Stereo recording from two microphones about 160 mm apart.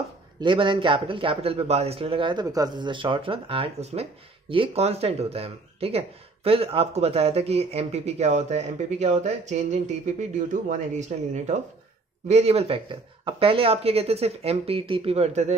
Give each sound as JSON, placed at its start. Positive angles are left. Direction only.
{"t": 0.4, "sound": "speech", "side_deg": -30}
{"t": 2.4, "sound": "speech", "side_deg": -20}